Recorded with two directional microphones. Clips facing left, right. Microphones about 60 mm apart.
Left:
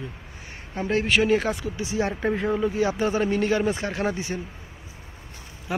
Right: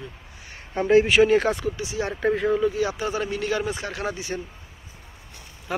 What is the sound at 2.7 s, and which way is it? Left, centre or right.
Speech, left.